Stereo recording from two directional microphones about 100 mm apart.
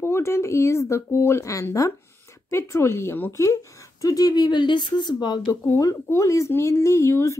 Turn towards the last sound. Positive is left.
turn(degrees=30)  # may be behind; listen again after turning